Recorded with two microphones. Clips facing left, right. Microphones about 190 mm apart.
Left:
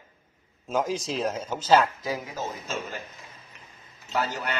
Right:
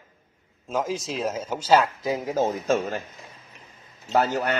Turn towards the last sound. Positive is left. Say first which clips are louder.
# right 7 dB
turn(degrees=-55)  # may be behind; listen again after turning